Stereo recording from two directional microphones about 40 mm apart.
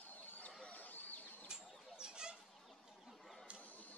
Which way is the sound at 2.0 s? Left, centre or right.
Right.